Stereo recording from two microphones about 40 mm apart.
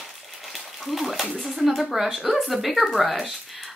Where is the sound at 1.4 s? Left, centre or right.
Centre.